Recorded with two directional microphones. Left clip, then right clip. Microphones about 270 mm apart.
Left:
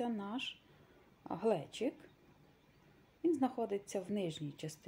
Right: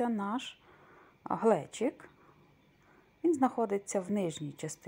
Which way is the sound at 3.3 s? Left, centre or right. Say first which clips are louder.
Right 7 dB; centre.